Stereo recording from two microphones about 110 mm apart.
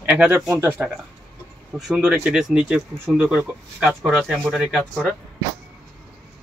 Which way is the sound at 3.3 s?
15° right (ahead or behind).